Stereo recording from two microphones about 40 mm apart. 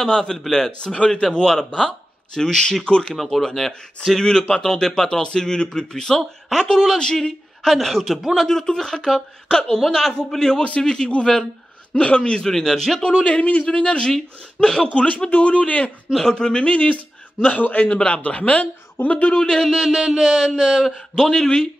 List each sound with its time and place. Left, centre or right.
0.0 s speech: centre
4.2 s speech: centre
7.6 s speech: centre
8.4 s speech: centre
11.9 s speech: left
12.4 s speech: centre
13.0 s speech: left
14.1 s speech: centre
15.2 s speech: left
16.1 s speech: centre
16.3 s speech: left
17.4 s a man's voice: left
17.8 s speech: left
19.3 s speech: centre